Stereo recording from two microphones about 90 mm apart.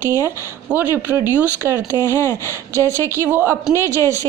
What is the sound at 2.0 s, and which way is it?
Speech, 30° left (ahead or behind).